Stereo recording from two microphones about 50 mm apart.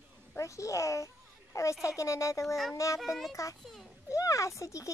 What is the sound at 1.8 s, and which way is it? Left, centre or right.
Speech, left.